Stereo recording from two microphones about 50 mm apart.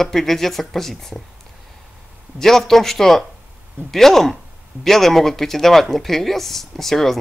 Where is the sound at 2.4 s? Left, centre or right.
Centre.